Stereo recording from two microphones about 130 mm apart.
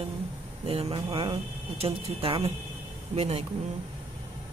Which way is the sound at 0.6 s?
50° right (ahead or behind).